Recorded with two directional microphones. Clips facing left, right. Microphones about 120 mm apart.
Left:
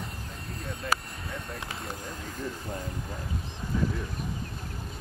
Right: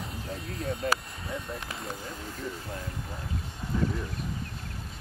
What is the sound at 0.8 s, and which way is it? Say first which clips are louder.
Speech: right 1 dB; 35° right (ahead or behind).